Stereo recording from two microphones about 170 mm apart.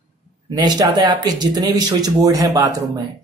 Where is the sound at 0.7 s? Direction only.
25° right (ahead or behind).